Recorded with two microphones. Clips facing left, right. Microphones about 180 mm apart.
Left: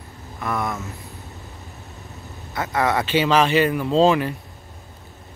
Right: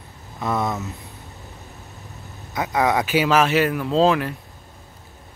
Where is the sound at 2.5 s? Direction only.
15° right (ahead or behind); by 4.4 s centre (ahead or behind).